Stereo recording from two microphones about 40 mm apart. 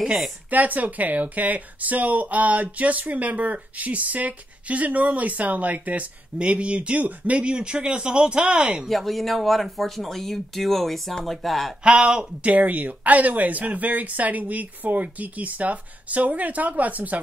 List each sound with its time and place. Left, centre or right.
0.0 s speech: centre
0.5 s speech: right
8.8 s speech: centre
11.8 s speech: right
12.4 s speech: right